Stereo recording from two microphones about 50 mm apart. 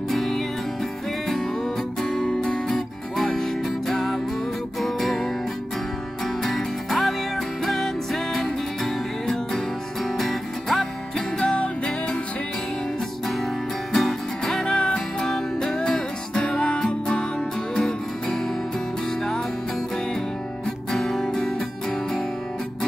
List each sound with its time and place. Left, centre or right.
0.1 s music: centre
2.0 s music: centre
2.4 s guitar: centre
3.2 s music: centre
11.5 s music: left
13.9 s music: centre
20.9 s music: centre